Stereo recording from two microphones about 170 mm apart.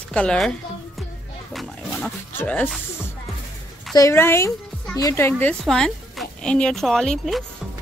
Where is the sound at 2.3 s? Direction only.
10° left (ahead or behind).